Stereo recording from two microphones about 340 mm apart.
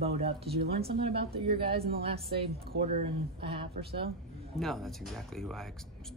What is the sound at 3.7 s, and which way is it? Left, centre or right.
Speech, right.